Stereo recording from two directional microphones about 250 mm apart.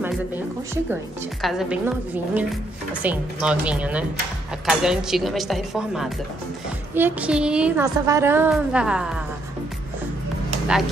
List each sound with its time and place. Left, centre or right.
1.4 s a woman's voice: centre